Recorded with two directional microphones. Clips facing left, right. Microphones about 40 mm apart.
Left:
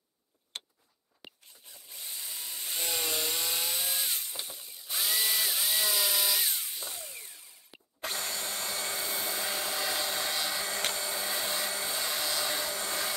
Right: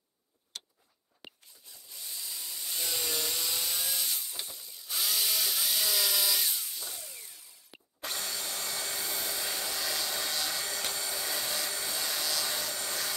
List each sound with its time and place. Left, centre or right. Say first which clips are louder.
0.5 s vehicle: left 3 dB; left
2.0 s wood: even; left; by 6.4 s centre
6.8 s a sound: left 2 dB; left
11.1 s hair dryer: left 2 dB; left